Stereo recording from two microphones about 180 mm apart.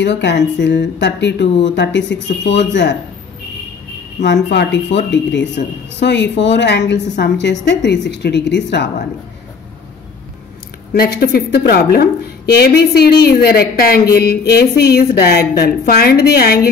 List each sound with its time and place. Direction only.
0.0 s speech: 75° left (ahead or behind)
4.2 s a woman's voice: 75° left (ahead or behind)
5.9 s speech: 75° left (ahead or behind)
10.9 s speech: 60° left (ahead or behind)